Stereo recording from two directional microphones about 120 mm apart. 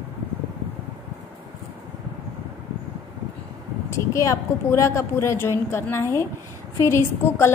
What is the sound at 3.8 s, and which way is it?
A woman's voice, 25° left (ahead or behind).